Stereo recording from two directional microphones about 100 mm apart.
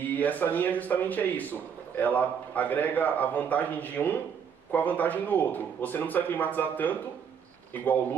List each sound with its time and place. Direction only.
0.0 s a man's voice: 15° left (ahead or behind)